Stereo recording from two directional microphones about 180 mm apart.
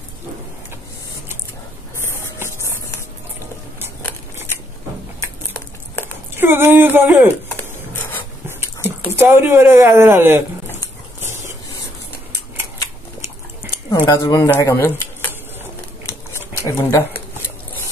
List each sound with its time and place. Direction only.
5.2 s a sound: 10° left (ahead or behind)
6.3 s speech: 10° right (ahead or behind)
7.4 s rub: 10° left (ahead or behind)
9.1 s speech: 15° right (ahead or behind)
14.0 s speech: 20° left (ahead or behind)
16.1 s a sound: 15° left (ahead or behind)